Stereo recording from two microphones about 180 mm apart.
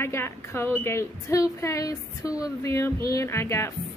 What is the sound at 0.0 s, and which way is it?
A woman's voice, 15° left (ahead or behind).